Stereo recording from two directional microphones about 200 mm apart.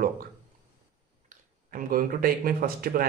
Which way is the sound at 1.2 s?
45° right (ahead or behind).